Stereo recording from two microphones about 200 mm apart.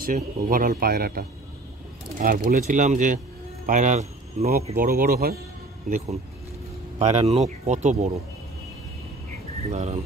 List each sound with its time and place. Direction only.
0.0 s speech: 45° right (ahead or behind)
9.7 s speech: 30° right (ahead or behind)